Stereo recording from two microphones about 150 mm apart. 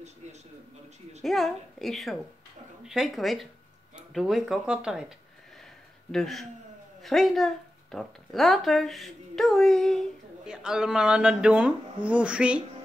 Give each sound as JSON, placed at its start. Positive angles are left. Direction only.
{"t": 1.2, "sound": "speech", "side_deg": 0}
{"t": 6.1, "sound": "speech", "side_deg": 0}